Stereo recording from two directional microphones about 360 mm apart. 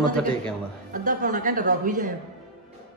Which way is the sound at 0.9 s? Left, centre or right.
Right.